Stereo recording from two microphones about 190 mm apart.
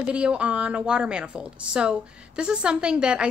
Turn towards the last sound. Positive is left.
turn(degrees=-5)  # may be behind; listen again after turning